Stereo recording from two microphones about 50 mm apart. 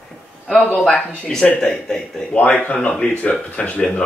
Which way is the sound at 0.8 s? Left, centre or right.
Centre.